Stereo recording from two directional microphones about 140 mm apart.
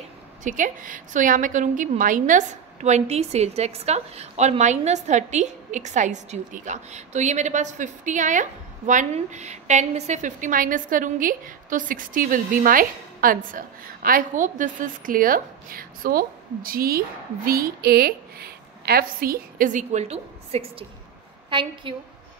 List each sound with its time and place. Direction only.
0.4 s a woman's voice: 65° right (ahead or behind)
21.5 s a woman's voice: 35° right (ahead or behind)